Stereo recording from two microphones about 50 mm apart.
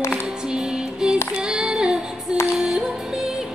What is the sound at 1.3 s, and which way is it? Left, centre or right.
Female singing, centre.